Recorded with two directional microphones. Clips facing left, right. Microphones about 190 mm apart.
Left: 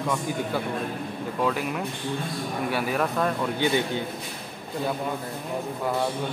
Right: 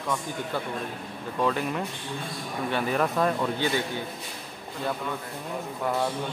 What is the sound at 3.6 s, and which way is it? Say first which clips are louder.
Speech: left 3 dB; 20° left (ahead or behind).